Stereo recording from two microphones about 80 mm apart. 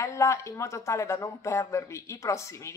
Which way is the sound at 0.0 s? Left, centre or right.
Left.